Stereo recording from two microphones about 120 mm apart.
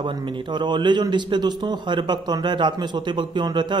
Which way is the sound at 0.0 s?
40° right (ahead or behind).